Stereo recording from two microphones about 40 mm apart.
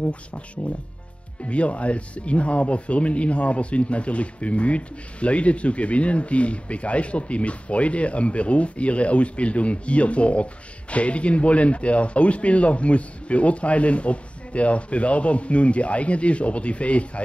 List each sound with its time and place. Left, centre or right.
0.0 s speech: left